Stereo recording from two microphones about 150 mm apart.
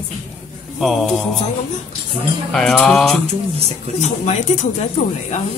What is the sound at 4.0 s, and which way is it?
Speech, 50° left (ahead or behind).